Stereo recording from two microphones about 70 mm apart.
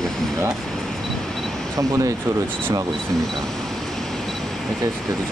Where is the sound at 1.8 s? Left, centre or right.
Right.